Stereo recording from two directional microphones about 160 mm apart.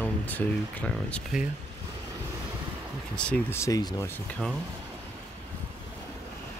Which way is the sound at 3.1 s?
5° left (ahead or behind).